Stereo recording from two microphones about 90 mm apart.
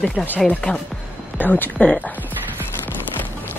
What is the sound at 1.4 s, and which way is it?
Speech, 20° left (ahead or behind).